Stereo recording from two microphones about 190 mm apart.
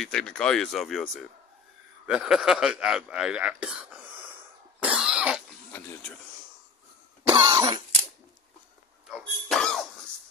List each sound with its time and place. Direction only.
0.0 s a man's voice: 5° left (ahead or behind)
4.7 s cough: 5° right (ahead or behind)
5.7 s a sound: 10° left (ahead or behind)
7.2 s cough: 30° right (ahead or behind)
9.1 s cough: centre (ahead or behind)